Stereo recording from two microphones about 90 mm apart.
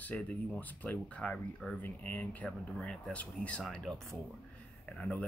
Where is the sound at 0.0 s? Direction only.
15° left (ahead or behind).